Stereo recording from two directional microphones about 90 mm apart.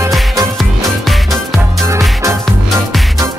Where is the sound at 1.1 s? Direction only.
Centre (ahead or behind).